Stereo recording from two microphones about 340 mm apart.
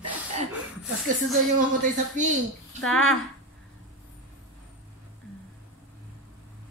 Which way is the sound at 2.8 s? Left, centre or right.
Centre.